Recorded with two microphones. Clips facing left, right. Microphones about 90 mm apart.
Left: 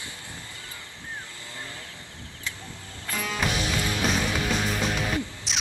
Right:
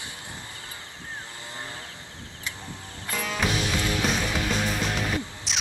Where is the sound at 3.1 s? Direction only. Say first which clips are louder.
Right 1 dB; centre (ahead or behind).